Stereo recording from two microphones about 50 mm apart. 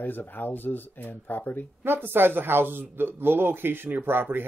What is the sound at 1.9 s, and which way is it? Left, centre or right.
Speech, right.